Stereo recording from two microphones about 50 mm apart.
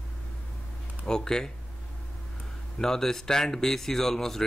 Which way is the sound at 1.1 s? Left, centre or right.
Centre.